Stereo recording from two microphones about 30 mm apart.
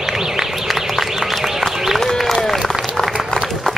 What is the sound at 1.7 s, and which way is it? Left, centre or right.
Run, centre.